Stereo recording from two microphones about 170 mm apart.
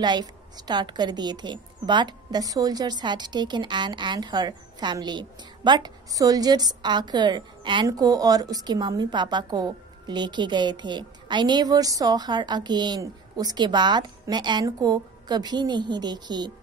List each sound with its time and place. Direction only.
0.0 s a woman's voice: 25° right (ahead or behind)